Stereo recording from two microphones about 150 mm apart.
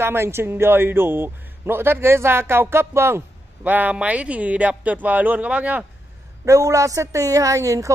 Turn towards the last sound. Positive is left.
turn(degrees=-20)  # may be behind; listen again after turning